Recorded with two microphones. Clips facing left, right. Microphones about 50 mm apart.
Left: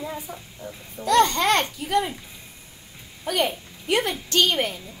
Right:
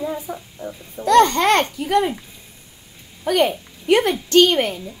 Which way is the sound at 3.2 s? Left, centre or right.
Right.